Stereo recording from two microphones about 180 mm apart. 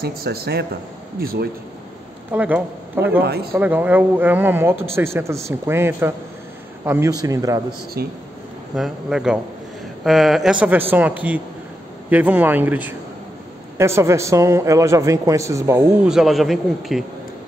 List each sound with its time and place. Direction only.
0.0 s speech: 60° right (ahead or behind)
2.3 s a man's voice: 10° right (ahead or behind)
8.0 s speech: 60° right (ahead or behind)
8.7 s a man's voice: centre (ahead or behind)
16.1 s a man's voice: centre (ahead or behind)